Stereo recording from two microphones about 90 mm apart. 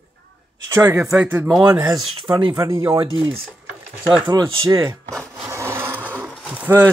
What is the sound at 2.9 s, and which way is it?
Speech, 70° right (ahead or behind).